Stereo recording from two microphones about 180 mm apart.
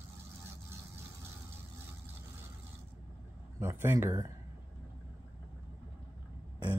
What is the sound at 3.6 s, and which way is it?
Speech, 15° right (ahead or behind).